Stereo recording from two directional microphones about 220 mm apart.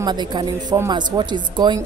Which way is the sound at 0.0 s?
20° right (ahead or behind).